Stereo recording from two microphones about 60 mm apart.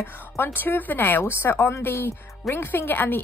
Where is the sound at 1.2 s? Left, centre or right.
Left.